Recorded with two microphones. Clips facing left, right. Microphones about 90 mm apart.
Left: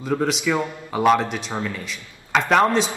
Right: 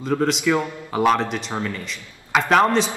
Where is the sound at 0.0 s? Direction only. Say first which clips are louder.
Right 2 dB; centre (ahead or behind).